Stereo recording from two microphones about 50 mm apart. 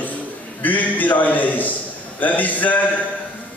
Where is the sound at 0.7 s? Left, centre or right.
Left.